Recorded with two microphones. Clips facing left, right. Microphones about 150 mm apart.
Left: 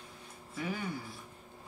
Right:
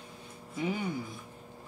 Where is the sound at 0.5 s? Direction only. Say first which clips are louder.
Right 5 dB; 20° right (ahead or behind).